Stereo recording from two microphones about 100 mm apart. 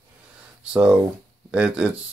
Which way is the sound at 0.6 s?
10° right (ahead or behind).